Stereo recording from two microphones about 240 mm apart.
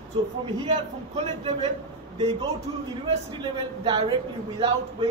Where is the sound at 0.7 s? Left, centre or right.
Right.